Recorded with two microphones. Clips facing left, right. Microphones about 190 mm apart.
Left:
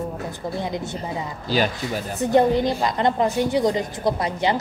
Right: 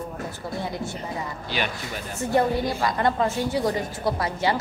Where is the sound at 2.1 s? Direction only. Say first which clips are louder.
Left 5 dB; 20° left (ahead or behind).